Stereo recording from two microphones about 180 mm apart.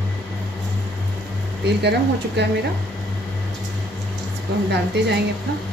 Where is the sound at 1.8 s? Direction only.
70° right (ahead or behind).